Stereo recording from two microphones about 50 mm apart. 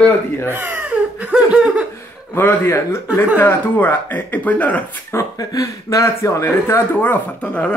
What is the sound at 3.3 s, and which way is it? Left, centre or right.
Speech, left.